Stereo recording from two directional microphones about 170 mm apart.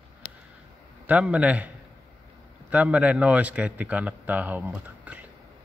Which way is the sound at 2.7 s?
10° right (ahead or behind).